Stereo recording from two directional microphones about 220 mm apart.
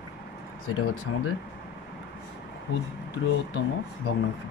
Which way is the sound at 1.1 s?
75° left (ahead or behind).